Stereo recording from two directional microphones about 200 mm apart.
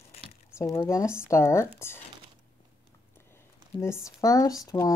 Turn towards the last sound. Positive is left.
turn(degrees=15)  # may be behind; listen again after turning